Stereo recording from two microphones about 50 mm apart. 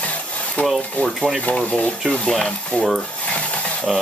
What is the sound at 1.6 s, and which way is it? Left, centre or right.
Speech, left.